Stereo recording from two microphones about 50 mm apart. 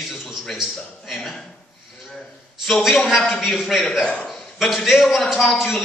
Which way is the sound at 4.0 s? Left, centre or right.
Left.